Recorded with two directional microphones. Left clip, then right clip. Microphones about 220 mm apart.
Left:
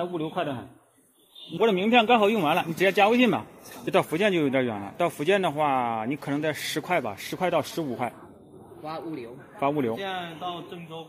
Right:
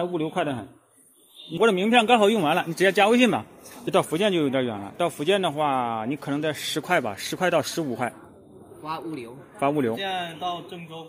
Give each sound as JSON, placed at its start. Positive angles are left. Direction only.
{"t": 0.0, "sound": "a man's voice", "side_deg": -30}
{"t": 1.6, "sound": "speech", "side_deg": -25}
{"t": 3.8, "sound": "a man's voice", "side_deg": -10}
{"t": 9.6, "sound": "speech", "side_deg": -20}